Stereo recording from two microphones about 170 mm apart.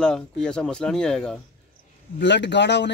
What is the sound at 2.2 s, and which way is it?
Speech, 90° left.